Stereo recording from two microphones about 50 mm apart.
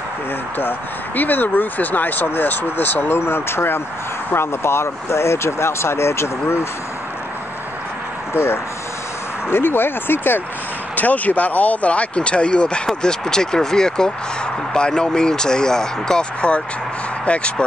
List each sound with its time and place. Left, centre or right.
0.6 s speech: left
8.3 s speech: left
11.0 s speech: left